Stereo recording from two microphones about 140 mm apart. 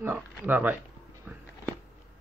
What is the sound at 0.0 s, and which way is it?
Speech, 15° right (ahead or behind).